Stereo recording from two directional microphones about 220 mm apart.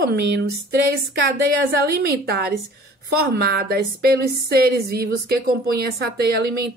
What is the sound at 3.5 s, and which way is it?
A woman's voice, 45° right (ahead or behind).